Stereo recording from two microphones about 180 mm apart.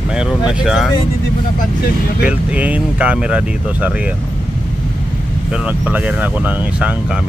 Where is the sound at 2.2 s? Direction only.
10° right (ahead or behind).